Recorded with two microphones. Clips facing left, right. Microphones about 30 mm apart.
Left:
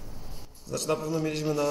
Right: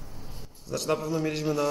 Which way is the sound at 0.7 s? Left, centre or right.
Centre.